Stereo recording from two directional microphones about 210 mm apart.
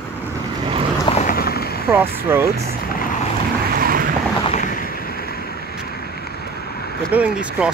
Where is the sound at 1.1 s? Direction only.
30° left (ahead or behind).